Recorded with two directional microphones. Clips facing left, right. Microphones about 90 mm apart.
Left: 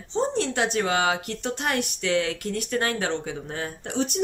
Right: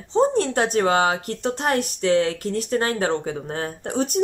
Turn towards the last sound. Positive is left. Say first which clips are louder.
# right 3 dB
turn(degrees=-40)  # may be behind; listen again after turning